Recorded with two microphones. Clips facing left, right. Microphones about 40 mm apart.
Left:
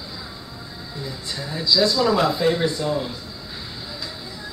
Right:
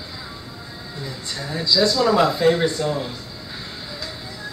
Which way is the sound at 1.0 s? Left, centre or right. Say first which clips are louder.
Right 1 dB; centre.